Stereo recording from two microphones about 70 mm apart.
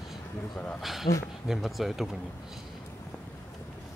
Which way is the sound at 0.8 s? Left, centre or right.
Centre.